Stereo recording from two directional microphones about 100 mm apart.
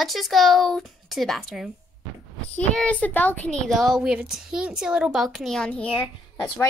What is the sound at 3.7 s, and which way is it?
Speech, 5° right (ahead or behind).